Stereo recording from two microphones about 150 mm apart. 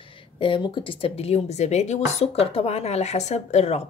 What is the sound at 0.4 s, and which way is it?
Speech, 35° left (ahead or behind).